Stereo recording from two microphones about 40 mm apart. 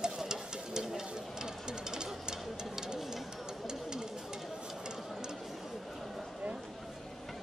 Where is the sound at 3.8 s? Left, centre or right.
Centre.